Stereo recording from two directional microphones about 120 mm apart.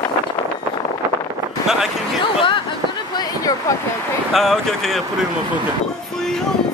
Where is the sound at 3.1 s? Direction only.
30° left (ahead or behind).